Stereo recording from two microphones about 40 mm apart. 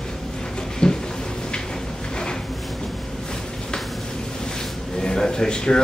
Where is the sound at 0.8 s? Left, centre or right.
Left.